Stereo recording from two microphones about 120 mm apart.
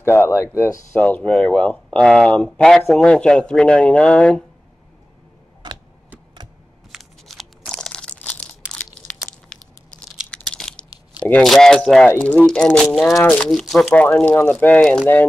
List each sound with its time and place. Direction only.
0.0 s speech: 20° left (ahead or behind)
0.9 s speech: 10° left (ahead or behind)
6.9 s crunch: centre (ahead or behind)
10.3 s a sound: 5° left (ahead or behind)
11.4 s speech: centre (ahead or behind)
13.5 s speech: 5° left (ahead or behind)